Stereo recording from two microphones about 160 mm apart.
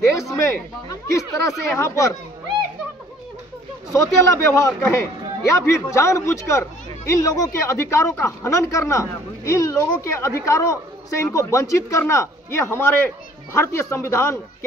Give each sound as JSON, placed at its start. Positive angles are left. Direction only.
{"t": 0.1, "sound": "speech", "side_deg": 20}
{"t": 3.9, "sound": "a man's voice", "side_deg": 20}